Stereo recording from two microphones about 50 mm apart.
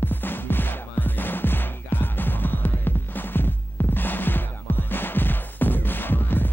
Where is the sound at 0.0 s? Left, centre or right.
Left.